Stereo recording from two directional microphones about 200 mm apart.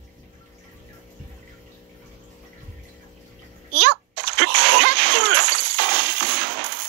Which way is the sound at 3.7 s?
60° right (ahead or behind).